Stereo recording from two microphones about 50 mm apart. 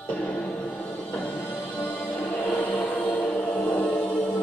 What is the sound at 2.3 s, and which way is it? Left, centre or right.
Choir, left.